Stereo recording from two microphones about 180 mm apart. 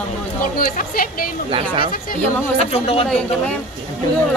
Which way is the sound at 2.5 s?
35° left (ahead or behind).